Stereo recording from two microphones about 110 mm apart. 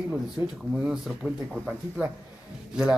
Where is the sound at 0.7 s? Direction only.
5° right (ahead or behind).